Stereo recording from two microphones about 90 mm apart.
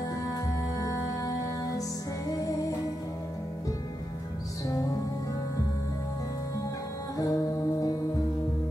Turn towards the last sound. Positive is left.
turn(degrees=45)  # may be behind; listen again after turning